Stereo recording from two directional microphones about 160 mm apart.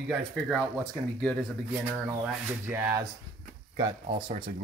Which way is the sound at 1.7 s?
10° right (ahead or behind).